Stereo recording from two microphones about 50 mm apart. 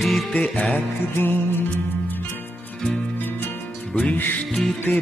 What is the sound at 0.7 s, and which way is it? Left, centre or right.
Music, left.